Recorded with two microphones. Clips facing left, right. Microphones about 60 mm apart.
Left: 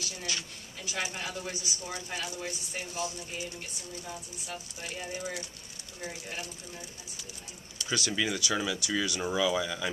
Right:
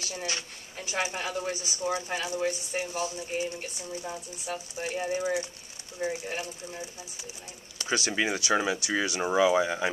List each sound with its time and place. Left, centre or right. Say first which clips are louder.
0.0 s speech: right 3 dB; right